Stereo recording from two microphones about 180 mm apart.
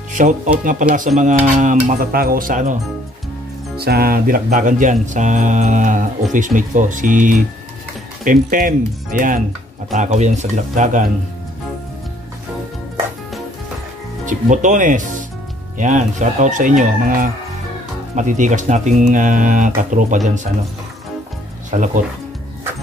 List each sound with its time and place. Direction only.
0.2 s music: 45° right (ahead or behind)
3.7 s music: 60° right (ahead or behind)
14.2 s speech: 45° right (ahead or behind)
15.8 s music: 40° right (ahead or behind)
21.6 s speech: 45° right (ahead or behind)